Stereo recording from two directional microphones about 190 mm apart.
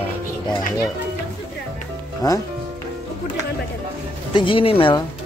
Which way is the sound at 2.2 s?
20° left (ahead or behind).